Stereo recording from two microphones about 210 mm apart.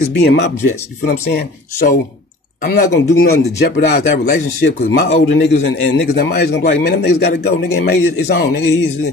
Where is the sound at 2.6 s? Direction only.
40° left (ahead or behind).